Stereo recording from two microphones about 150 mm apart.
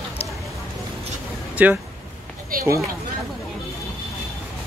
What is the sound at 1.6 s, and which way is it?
Speech, 10° right (ahead or behind).